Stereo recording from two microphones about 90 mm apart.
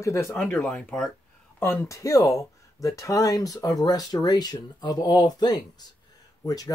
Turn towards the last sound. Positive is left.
turn(degrees=45)  # may be behind; listen again after turning